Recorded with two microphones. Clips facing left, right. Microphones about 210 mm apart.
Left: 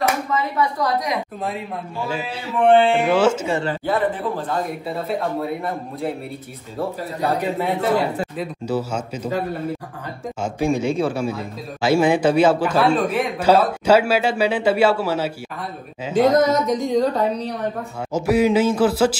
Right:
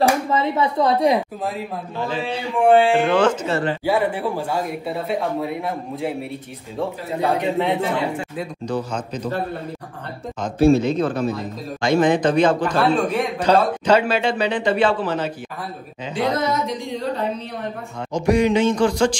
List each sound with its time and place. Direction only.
0.3 s a woman's voice: 25° right (ahead or behind)
2.0 s a man's voice: 10° left (ahead or behind)
3.8 s a man's voice: 10° right (ahead or behind)
7.3 s a man's voice: centre (ahead or behind)
10.4 s a man's voice: 10° left (ahead or behind)
16.1 s speech: 45° left (ahead or behind)
18.1 s a man's voice: 5° left (ahead or behind)